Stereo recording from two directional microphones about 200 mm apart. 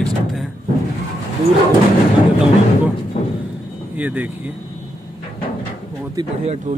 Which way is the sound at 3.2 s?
40° left (ahead or behind).